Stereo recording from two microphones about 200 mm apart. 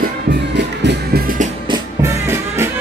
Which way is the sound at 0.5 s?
60° right (ahead or behind).